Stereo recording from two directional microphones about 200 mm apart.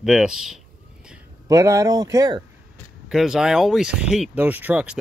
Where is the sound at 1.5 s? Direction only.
15° right (ahead or behind).